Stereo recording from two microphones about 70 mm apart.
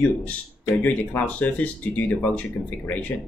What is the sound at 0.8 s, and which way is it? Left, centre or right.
Speech, left.